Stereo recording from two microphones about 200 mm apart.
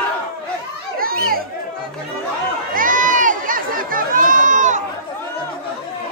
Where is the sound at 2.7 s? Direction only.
45° right (ahead or behind).